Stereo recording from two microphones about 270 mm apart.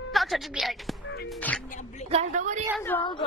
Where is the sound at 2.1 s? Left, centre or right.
Right.